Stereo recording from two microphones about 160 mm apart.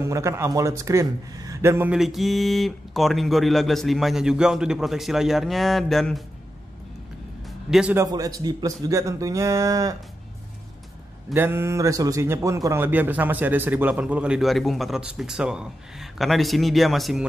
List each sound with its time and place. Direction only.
0.0 s a man's voice: 20° right (ahead or behind)
2.0 s speech: centre (ahead or behind)
7.4 s music: centre (ahead or behind)
7.9 s speech: 20° right (ahead or behind)
11.3 s a man's voice: 15° right (ahead or behind)